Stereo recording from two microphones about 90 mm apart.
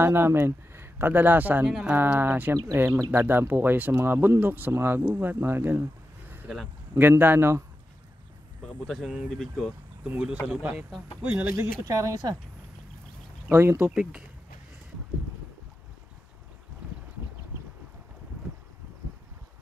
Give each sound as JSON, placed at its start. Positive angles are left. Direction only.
{"t": 0.0, "sound": "speech", "side_deg": -25}
{"t": 1.7, "sound": "speech", "side_deg": -5}
{"t": 2.0, "sound": "speech", "side_deg": -25}
{"t": 10.0, "sound": "speech", "side_deg": -10}
{"t": 11.2, "sound": "speech", "side_deg": -25}
{"t": 11.8, "sound": "speech", "side_deg": -40}
{"t": 13.5, "sound": "speech", "side_deg": -30}